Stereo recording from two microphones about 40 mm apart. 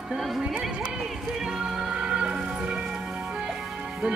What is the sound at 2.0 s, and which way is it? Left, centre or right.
Music, right.